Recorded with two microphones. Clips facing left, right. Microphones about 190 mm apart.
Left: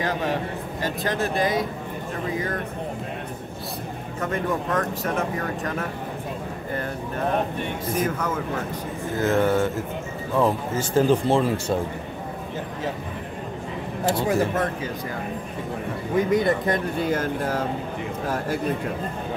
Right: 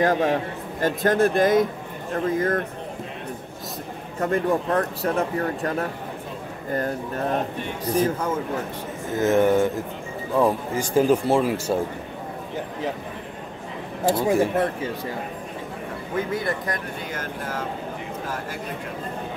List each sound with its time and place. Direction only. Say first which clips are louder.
0.0 s a man's voice: right 5 dB; 50° right (ahead or behind)
4.2 s speech: right 4 dB; 35° right (ahead or behind)
7.8 s speech: right 4 dB; 30° right (ahead or behind)
9.1 s speech: right 3 dB; 20° right (ahead or behind)
14.1 s speech: right 2 dB; 25° right (ahead or behind)
16.3 s speech: left 6 dB; 20° left (ahead or behind)